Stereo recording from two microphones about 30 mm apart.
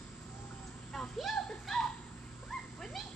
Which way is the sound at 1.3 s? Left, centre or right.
Centre.